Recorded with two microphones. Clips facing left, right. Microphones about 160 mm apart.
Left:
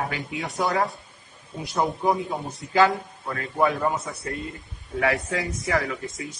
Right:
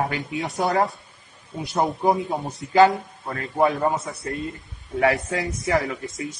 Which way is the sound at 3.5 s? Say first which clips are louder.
Right 2 dB; 25° right (ahead or behind).